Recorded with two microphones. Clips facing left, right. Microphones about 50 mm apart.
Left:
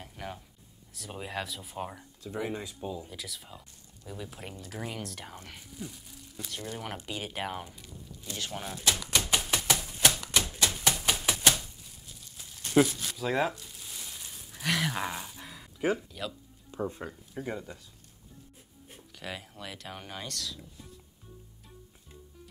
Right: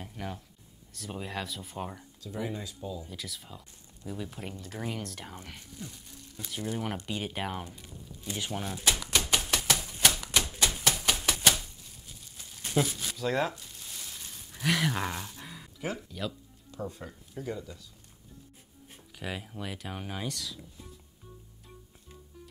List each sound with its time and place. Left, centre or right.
0.0 s music: centre
0.9 s speech: centre
2.5 s speech: left
3.1 s speech: centre
8.5 s typewriter: centre
16.1 s speech: centre
16.7 s speech: left
18.9 s speech: centre